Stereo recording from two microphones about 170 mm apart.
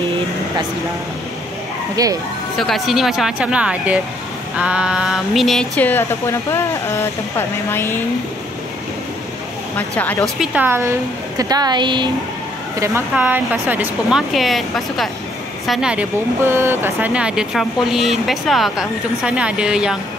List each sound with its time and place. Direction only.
2.0 s speech: 20° right (ahead or behind)
2.5 s speech: centre (ahead or behind)
9.8 s speech: 10° left (ahead or behind)
10.4 s speech: 10° right (ahead or behind); by 12.1 s 25° right (ahead or behind)
13.1 s speech: 10° right (ahead or behind)